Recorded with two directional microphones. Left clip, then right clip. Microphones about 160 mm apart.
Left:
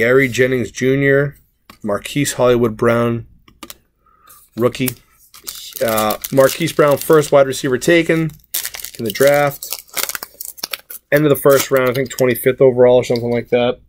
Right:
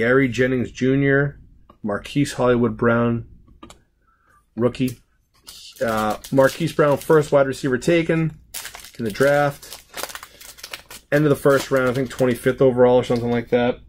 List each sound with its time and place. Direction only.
0.0 s speech: 10° left (ahead or behind)
4.6 s speech: 20° left (ahead or behind)
8.7 s crumpling: 10° left (ahead or behind)
10.7 s speech: 10° left (ahead or behind)